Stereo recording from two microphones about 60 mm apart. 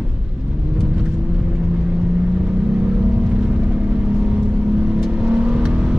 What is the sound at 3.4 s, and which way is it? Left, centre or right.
Vehicle, centre.